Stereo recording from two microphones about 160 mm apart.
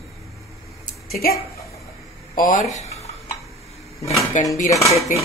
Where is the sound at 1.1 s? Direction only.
70° left (ahead or behind).